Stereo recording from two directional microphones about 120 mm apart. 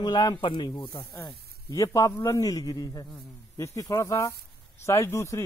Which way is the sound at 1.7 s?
25° left (ahead or behind).